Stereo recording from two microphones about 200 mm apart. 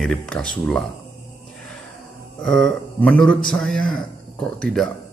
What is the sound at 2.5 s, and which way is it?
Speech, 5° left (ahead or behind).